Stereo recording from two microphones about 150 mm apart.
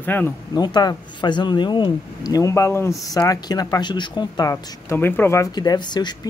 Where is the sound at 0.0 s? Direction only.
10° left (ahead or behind).